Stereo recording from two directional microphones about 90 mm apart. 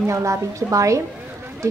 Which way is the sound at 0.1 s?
35° right (ahead or behind).